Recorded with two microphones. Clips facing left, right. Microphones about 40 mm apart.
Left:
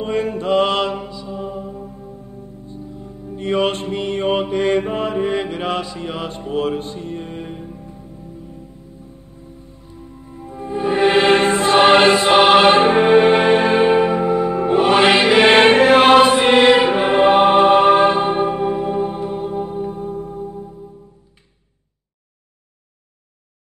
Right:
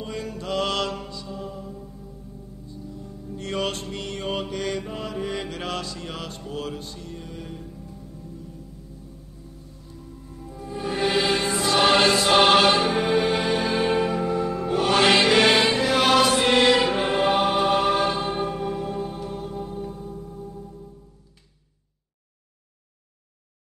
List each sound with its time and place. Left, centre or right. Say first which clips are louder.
0.0 s mantra: left 11 dB; left
2.6 s music: left 3 dB; left
9.7 s music: left 4 dB; left
13.8 s music: left 8 dB; left
15.5 s music: left 10 dB; left
20.4 s music: left 8 dB; left